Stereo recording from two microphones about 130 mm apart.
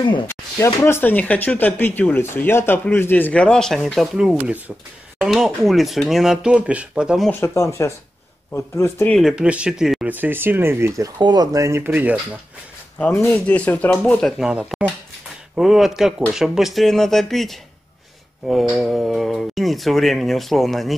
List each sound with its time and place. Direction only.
0.3 s speech: 20° left (ahead or behind); by 7.2 s 5° right (ahead or behind)
7.2 s speech: 20° left (ahead or behind)
9.1 s speech: 5° right (ahead or behind)
11.1 s speech: 35° right (ahead or behind); by 12.2 s 15° right (ahead or behind)
13.0 s speech: 10° left (ahead or behind)
14.4 s speech: 5° right (ahead or behind)